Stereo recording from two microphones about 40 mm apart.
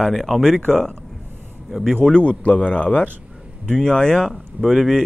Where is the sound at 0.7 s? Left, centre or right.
Centre.